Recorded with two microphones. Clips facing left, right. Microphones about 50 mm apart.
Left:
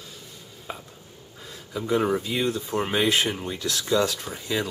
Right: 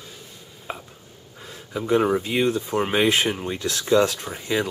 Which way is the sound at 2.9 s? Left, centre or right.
Right.